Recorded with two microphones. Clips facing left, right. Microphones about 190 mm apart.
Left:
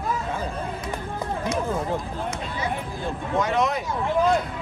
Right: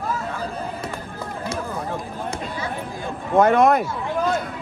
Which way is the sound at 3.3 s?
55° right (ahead or behind).